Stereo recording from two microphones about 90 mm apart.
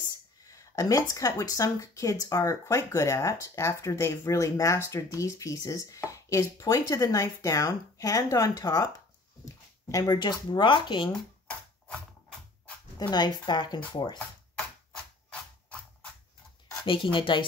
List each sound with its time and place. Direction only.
0.5 s speech: 35° left (ahead or behind)
10.2 s speech: 60° left (ahead or behind)
11.9 s a sound: 5° left (ahead or behind)
13.1 s speech: 55° left (ahead or behind)
16.8 s speech: 75° left (ahead or behind)